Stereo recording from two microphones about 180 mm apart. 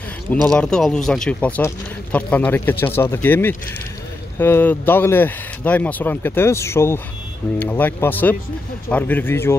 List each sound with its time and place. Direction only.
0.6 s speech: 5° left (ahead or behind)